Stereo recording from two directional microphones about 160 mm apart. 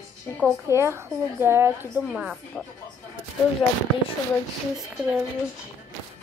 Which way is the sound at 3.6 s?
10° left (ahead or behind).